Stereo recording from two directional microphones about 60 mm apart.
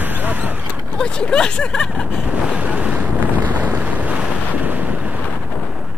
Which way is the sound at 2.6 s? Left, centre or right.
Right.